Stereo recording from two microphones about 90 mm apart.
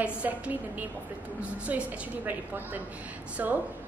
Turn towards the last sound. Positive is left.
turn(degrees=-25)  # may be behind; listen again after turning